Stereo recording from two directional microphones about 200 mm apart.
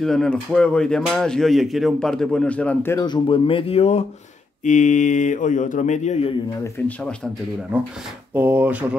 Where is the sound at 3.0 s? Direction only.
25° left (ahead or behind).